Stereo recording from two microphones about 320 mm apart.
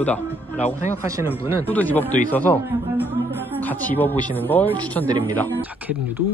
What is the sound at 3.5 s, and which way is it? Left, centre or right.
Speech, centre.